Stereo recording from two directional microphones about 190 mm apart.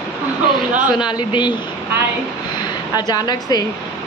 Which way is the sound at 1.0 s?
20° left (ahead or behind).